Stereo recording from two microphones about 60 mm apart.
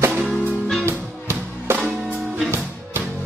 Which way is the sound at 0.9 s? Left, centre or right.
Right.